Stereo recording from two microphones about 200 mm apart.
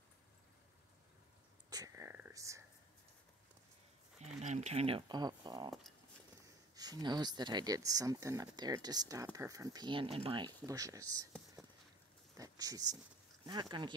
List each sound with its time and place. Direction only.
1.7 s whispering: 15° right (ahead or behind)
4.4 s speech: 35° right (ahead or behind); by 11.2 s 15° right (ahead or behind)
11.6 s a sound: centre (ahead or behind)
12.4 s speech: 20° right (ahead or behind)